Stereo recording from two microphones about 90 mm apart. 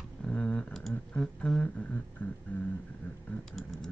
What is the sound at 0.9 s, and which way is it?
Speech, 10° left (ahead or behind).